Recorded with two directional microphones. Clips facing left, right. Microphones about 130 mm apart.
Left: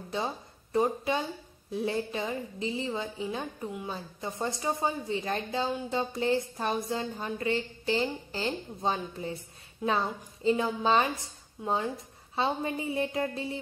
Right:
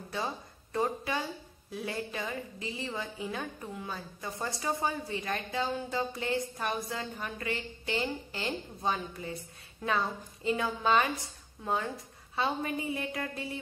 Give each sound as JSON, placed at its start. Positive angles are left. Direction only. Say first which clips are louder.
{"t": 0.7, "sound": "a woman's voice", "louder": "left 4 dB", "side_deg": 20}
{"t": 9.8, "sound": "a woman's voice", "louder": "left 2 dB", "side_deg": 15}